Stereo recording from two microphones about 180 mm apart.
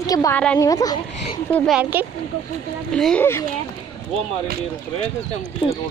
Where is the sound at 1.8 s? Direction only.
10° right (ahead or behind).